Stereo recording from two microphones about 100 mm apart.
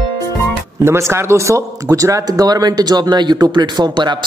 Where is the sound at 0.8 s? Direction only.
25° right (ahead or behind).